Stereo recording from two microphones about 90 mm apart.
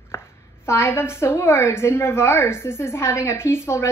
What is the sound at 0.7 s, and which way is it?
A woman's voice, 30° left (ahead or behind).